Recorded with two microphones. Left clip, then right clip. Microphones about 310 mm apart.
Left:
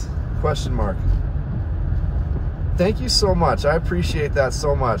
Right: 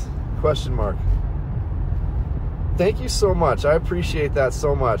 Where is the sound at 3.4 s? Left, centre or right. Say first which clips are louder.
Right 1 dB; centre.